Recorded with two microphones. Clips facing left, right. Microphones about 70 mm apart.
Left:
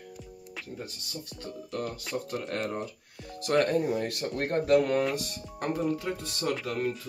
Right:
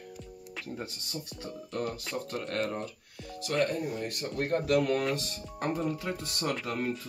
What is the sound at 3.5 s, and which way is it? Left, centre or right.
Speech, left.